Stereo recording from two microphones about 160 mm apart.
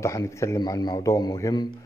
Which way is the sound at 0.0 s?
20° left (ahead or behind).